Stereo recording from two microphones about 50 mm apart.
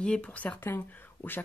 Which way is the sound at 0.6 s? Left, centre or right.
Left.